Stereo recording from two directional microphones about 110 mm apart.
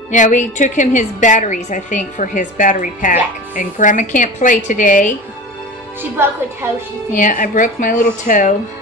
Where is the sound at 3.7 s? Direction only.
90° left.